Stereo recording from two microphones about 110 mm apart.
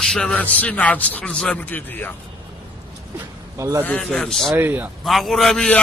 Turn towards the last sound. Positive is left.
turn(degrees=10)  # may be behind; listen again after turning